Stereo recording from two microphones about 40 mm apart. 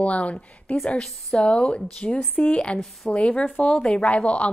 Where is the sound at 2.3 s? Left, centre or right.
Left.